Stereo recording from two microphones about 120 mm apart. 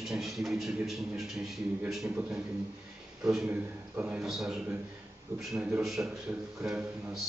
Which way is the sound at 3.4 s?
10° right (ahead or behind).